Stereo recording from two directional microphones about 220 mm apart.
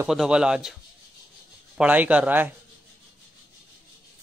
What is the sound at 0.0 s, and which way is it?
Speech, 5° right (ahead or behind).